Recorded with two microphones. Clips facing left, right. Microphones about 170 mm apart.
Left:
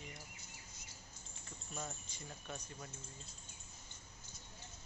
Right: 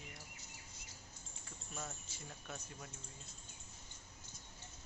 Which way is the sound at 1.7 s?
Centre (ahead or behind).